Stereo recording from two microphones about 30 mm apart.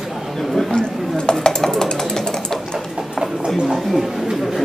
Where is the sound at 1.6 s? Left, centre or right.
Centre.